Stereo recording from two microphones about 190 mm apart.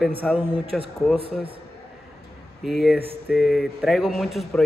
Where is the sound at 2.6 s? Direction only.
Centre (ahead or behind).